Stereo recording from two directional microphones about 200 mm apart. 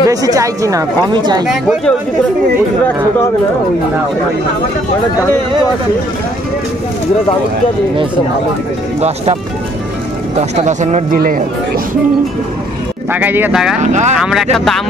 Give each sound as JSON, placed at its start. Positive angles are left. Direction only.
{"t": 0.0, "sound": "a woman's voice", "side_deg": -15}
{"t": 1.5, "sound": "speech", "side_deg": 0}
{"t": 9.0, "sound": "speech", "side_deg": -30}
{"t": 10.5, "sound": "speech", "side_deg": -35}
{"t": 13.1, "sound": "a woman's voice", "side_deg": -10}
{"t": 13.7, "sound": "speech", "side_deg": -35}
{"t": 14.1, "sound": "speech", "side_deg": 0}